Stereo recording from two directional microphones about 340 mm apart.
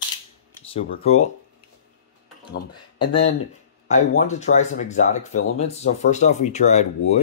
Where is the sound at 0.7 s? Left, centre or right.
Centre.